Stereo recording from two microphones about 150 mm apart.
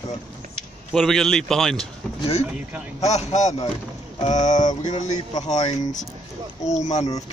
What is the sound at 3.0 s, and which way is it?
Speech, 50° left (ahead or behind).